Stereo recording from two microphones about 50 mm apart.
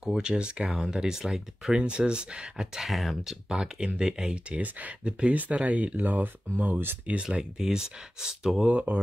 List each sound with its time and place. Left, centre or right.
0.0 s speech: centre
3.4 s speech: centre
5.9 s speech: right
7.1 s speech: centre
8.6 s speech: right